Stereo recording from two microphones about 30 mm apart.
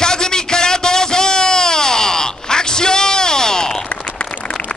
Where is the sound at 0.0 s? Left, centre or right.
Left.